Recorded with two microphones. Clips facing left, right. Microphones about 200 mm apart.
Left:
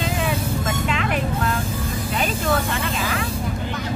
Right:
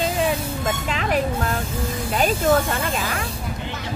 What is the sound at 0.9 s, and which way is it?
Vehicle, 35° right (ahead or behind).